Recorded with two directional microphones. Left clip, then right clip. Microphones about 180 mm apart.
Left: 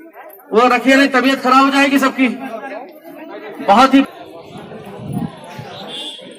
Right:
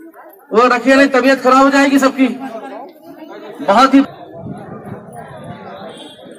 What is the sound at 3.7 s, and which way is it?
Speech, 45° left (ahead or behind).